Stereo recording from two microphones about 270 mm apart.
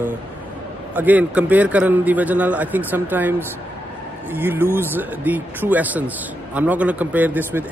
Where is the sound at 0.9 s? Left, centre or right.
Centre.